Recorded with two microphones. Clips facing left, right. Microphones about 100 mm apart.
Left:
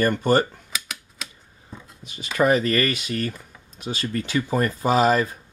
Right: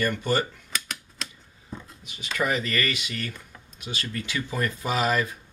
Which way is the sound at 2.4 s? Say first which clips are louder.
Left 7 dB; 40° left (ahead or behind).